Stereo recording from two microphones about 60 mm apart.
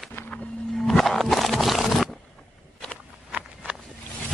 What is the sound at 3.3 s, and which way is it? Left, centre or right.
Walk, centre.